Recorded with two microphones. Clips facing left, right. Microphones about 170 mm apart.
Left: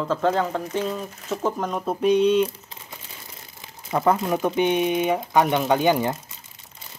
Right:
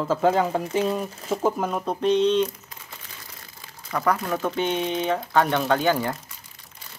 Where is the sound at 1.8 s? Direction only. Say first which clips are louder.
Left 2 dB; 5° left (ahead or behind).